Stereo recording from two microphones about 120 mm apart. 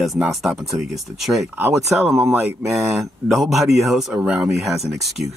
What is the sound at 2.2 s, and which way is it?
Speech, 15° right (ahead or behind).